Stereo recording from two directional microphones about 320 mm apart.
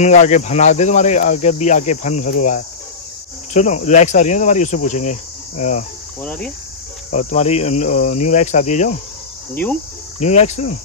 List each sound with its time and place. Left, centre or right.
0.0 s speech: left
6.2 s cricket: centre
7.1 s speech: left
10.2 s speech: left